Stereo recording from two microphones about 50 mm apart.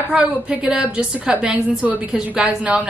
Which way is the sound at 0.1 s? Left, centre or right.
Right.